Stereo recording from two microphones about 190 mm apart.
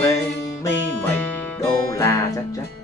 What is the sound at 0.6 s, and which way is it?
Music, 10° left (ahead or behind).